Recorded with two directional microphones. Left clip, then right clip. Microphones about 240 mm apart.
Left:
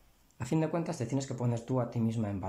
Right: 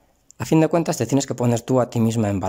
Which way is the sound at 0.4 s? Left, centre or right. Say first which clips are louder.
Right 14 dB; right.